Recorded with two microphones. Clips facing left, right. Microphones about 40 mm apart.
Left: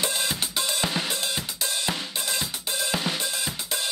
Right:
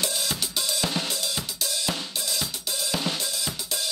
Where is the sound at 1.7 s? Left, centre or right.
Left.